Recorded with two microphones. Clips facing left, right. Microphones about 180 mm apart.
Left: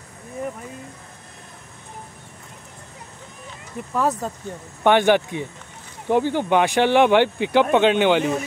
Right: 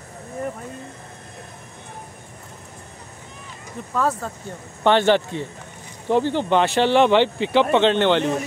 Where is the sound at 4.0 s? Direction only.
15° left (ahead or behind).